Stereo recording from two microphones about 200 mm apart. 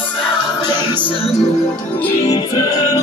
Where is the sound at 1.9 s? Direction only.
10° left (ahead or behind).